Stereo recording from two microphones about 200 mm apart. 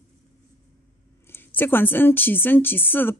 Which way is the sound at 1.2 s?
10° left (ahead or behind).